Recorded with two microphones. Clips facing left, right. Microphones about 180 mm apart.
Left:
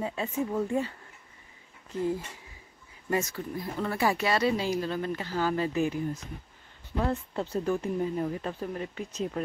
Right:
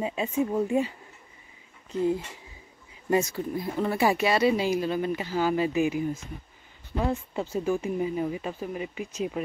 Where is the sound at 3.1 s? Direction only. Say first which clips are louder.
Right 5 dB; 20° right (ahead or behind).